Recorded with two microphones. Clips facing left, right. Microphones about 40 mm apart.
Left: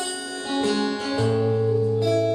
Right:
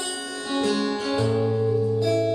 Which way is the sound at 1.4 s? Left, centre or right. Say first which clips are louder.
Left 1 dB; centre.